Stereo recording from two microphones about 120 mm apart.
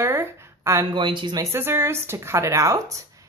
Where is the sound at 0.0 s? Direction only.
25° right (ahead or behind).